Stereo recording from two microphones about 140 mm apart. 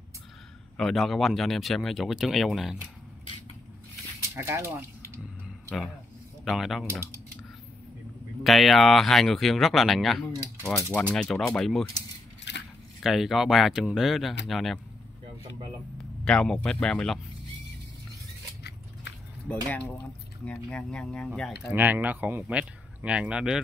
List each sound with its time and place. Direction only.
0.7 s speech: centre (ahead or behind)
4.4 s speech: 15° right (ahead or behind)
6.4 s speech: centre (ahead or behind)
8.5 s speech: centre (ahead or behind)
10.7 s speech: 20° left (ahead or behind)
11.0 s speech: 5° left (ahead or behind)
13.0 s speech: centre (ahead or behind)
16.3 s speech: 5° left (ahead or behind)
19.4 s speech: 10° left (ahead or behind)
21.7 s speech: 15° right (ahead or behind)